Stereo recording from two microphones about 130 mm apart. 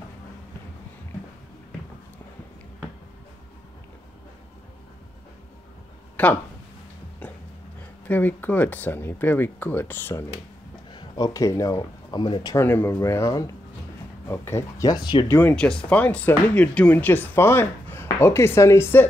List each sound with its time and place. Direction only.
6.2 s speech: 10° left (ahead or behind)
8.1 s speech: 15° left (ahead or behind)
10.9 s speech: 35° left (ahead or behind)
12.5 s speech: 15° left (ahead or behind); by 15.2 s 35° left (ahead or behind)
15.2 s speech: 15° left (ahead or behind)